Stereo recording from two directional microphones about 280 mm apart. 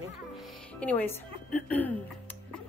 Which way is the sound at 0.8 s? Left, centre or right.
Centre.